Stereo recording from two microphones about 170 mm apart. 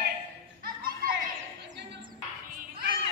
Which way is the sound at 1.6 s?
80° right.